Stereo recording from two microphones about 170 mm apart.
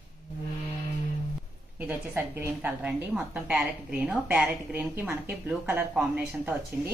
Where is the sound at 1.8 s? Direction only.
10° right (ahead or behind).